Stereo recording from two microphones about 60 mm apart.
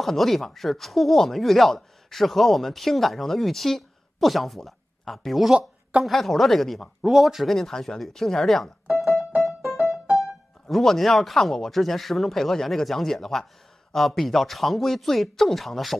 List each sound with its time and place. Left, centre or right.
0.0 s speech: centre
5.5 s speech: centre
6.0 s speech: centre
8.8 s music: centre
10.7 s speech: centre